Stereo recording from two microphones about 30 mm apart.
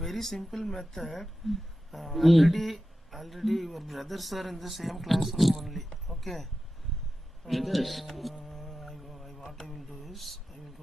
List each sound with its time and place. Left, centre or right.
0.0 s speech: centre
8.5 s mantra: centre
9.5 s speech: centre